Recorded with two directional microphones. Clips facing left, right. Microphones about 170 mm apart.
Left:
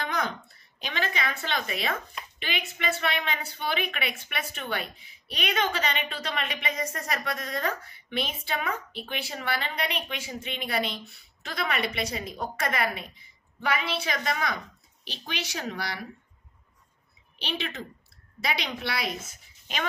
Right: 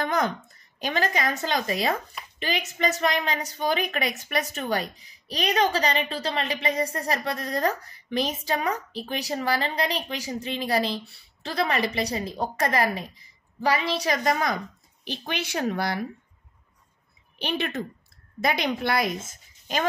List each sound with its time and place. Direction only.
0.0 s a woman's voice: 50° right (ahead or behind)
15.0 s a woman's voice: 55° right (ahead or behind)
17.4 s a woman's voice: 50° right (ahead or behind)